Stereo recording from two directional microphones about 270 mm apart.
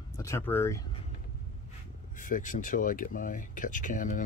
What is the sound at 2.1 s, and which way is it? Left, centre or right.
Speech, left.